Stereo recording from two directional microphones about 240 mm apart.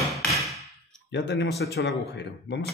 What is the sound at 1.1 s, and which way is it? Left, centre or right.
Speech, left.